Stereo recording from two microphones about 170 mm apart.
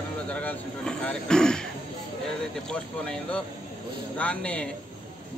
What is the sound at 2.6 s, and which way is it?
Speech, 5° left (ahead or behind).